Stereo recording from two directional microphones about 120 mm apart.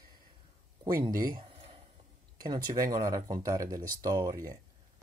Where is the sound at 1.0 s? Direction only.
40° right (ahead or behind).